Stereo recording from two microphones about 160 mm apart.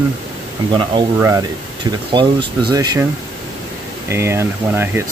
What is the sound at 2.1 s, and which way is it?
Speech, 30° right (ahead or behind).